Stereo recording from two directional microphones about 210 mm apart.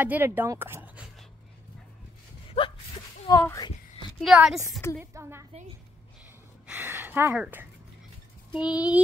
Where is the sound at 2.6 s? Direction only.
30° left (ahead or behind).